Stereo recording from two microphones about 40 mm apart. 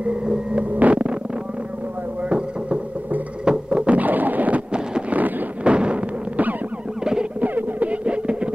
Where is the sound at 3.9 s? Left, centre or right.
Right.